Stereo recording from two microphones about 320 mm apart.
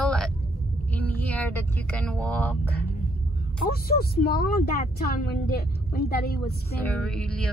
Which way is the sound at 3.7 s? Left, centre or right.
Left.